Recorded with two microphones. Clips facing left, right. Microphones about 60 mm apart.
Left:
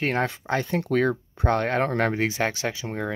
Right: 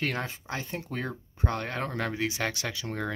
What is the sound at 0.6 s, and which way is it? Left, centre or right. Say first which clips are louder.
Speech: left 12 dB; left.